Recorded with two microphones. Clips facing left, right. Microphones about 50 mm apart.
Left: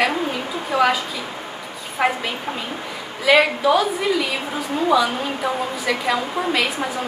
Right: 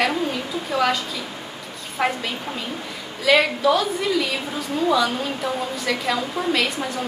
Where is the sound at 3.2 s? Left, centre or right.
Centre.